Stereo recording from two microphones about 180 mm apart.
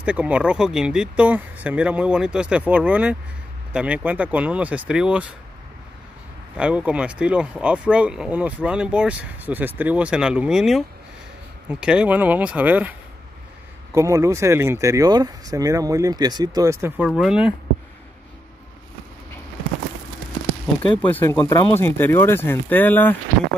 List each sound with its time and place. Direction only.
0.0 s speech: 5° right (ahead or behind)
6.5 s speech: 5° right (ahead or behind)
13.9 s speech: 15° right (ahead or behind)
21.1 s speech: 15° left (ahead or behind)